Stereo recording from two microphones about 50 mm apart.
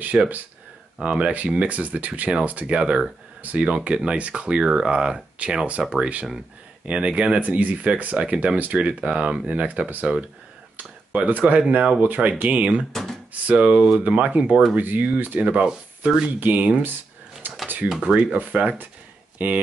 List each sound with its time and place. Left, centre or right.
0.1 s speech: centre
12.9 s speech: centre
13.3 s speech: right
15.4 s speech: right
16.3 s speech: right
18.0 s speech: right